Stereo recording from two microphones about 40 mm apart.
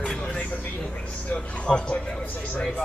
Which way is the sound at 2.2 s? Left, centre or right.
Left.